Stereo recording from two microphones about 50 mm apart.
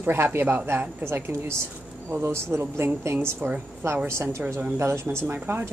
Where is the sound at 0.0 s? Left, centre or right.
Right.